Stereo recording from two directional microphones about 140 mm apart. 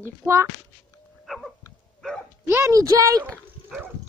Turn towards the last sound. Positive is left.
turn(degrees=5)  # may be behind; listen again after turning